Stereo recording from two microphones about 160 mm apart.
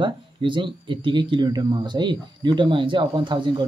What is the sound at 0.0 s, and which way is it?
Speech, 30° right (ahead or behind).